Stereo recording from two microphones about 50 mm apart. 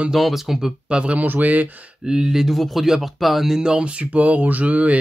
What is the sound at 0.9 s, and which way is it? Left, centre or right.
Speech, right.